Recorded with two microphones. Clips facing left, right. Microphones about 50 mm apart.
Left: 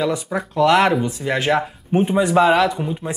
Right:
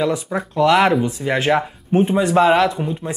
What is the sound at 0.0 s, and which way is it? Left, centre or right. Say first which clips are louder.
Speech: right 1 dB; centre.